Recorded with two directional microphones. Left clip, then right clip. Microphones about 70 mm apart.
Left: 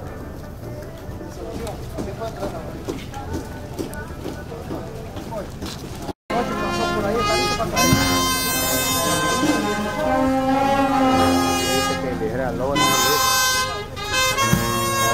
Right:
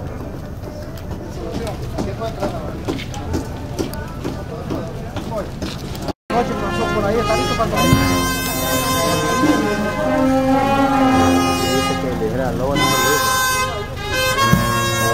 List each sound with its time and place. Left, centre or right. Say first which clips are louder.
6.4 s vehicle: right 2 dB; left
7.2 s music: right 3 dB; left
12.4 s vehicle: right 3 dB; centre
12.7 s vehicle: right 1 dB; left
14.1 s harmonica: right 3 dB; left